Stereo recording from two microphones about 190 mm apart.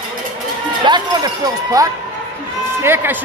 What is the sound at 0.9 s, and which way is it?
Run, 25° right (ahead or behind).